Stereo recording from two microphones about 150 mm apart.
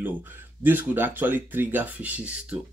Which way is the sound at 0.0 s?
15° right (ahead or behind).